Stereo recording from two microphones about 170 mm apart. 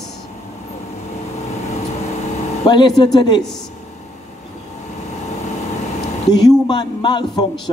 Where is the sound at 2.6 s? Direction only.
25° left (ahead or behind).